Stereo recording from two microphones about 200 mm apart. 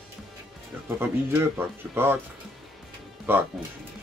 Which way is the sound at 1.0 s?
10° right (ahead or behind).